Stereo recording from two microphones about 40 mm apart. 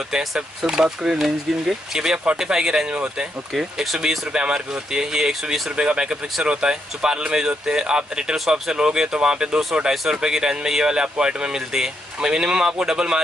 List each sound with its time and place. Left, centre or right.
0.2 s speech: centre
2.9 s speech: right
3.5 s speech: centre
4.3 s speech: right